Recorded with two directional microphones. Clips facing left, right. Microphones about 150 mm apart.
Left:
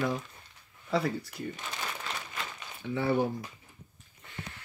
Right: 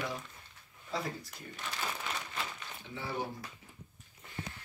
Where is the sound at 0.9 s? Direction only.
65° left (ahead or behind).